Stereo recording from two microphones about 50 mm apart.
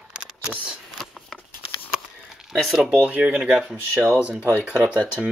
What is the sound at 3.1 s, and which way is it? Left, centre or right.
Speech, right.